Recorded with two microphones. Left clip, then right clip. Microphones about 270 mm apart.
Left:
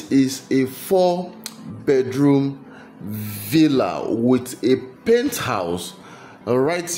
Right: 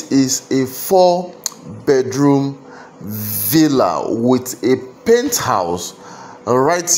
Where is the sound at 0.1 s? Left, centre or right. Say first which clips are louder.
Right 3 dB; centre.